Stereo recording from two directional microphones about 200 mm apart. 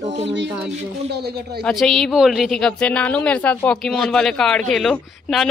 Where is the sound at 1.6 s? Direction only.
Centre (ahead or behind).